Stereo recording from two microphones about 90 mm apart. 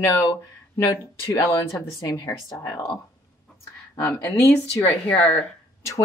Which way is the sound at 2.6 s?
45° left (ahead or behind).